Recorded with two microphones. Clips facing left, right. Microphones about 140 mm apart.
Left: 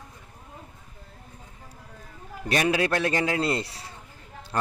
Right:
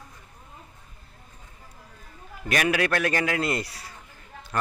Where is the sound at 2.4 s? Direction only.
25° left (ahead or behind).